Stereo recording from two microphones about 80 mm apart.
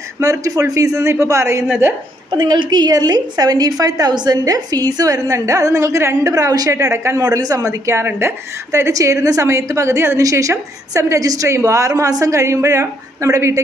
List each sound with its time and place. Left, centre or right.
0.2 s a woman's voice: right
2.3 s a woman's voice: right
6.7 s a woman's voice: right
7.2 s a woman's voice: right
8.9 s a woman's voice: right